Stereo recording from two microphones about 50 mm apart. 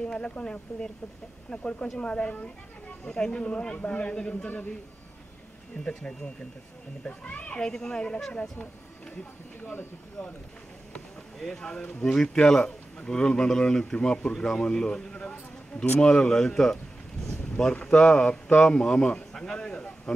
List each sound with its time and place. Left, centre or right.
0.0 s a man's voice: left
5.9 s a man's voice: left
7.6 s speech: centre
8.3 s a child's voice: left
11.3 s speech: centre
17.8 s speech: centre